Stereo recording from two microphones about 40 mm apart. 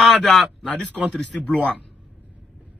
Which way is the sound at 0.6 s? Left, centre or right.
Left.